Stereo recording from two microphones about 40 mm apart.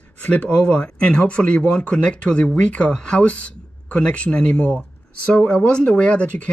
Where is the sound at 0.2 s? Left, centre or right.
Left.